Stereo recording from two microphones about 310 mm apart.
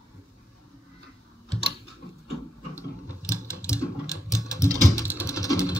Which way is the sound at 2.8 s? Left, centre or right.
Centre.